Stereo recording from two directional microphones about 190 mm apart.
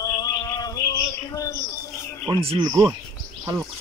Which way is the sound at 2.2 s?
25° right (ahead or behind).